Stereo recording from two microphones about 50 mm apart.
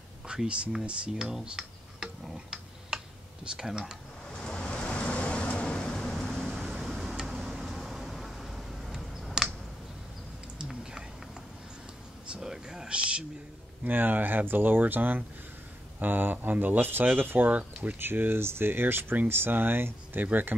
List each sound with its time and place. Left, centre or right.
0.3 s speech: centre
1.1 s tick-tock: centre
3.5 s speech: centre
4.4 s waves: centre
4.6 s vehicle: left; by 6.5 s centre
6.6 s a sound: centre
10.6 s a sound: centre
12.4 s a sound: centre
13.8 s speech: right